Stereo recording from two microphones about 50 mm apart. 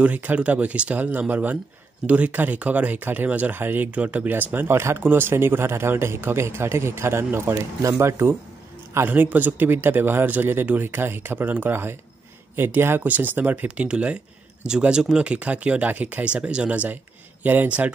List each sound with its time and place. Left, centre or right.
0.0 s speech: right
4.7 s speech: right
5.0 s speech: right
7.8 s speech: right
9.0 s speech: right
13.0 s speech: right
13.8 s speech: right
16.9 s a sound: right